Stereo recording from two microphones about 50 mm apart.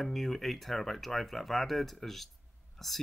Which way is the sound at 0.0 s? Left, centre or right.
Centre.